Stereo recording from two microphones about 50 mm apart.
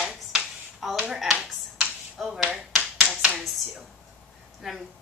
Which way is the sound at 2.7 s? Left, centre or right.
Right.